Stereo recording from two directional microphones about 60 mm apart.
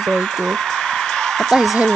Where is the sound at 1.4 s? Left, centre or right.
Centre.